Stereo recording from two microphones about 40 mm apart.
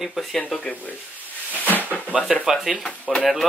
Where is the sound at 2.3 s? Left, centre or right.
Centre.